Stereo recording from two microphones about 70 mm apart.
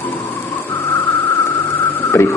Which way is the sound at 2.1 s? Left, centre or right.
Left.